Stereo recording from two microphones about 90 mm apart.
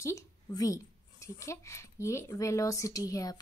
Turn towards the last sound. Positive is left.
turn(degrees=40)  # may be behind; listen again after turning